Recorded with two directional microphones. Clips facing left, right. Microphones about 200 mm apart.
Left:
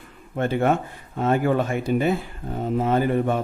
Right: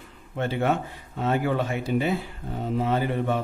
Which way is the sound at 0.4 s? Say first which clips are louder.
Left 4 dB; 50° left (ahead or behind).